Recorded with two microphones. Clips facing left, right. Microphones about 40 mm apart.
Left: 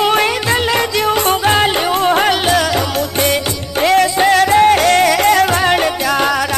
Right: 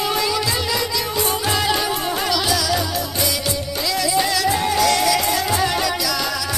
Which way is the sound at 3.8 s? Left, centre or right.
Left.